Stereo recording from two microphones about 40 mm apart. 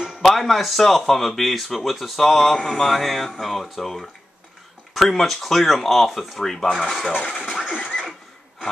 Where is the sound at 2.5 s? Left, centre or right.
Centre.